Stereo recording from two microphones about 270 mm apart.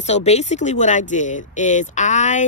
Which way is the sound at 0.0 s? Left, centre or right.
Left.